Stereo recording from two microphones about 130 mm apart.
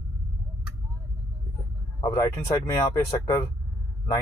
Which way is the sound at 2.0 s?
30° left (ahead or behind).